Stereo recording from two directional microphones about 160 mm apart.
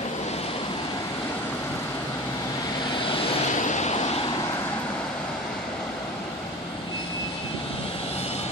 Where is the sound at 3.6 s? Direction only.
45° left (ahead or behind).